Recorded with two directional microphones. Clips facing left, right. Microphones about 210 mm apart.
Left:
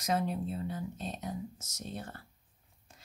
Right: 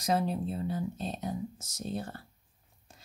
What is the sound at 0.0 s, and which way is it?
A woman's voice, 35° right (ahead or behind).